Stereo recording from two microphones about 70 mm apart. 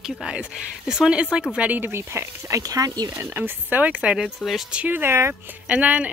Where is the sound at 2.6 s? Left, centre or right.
Right.